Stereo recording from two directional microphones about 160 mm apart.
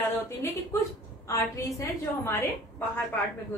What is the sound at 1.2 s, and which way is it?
A woman's voice, 20° left (ahead or behind).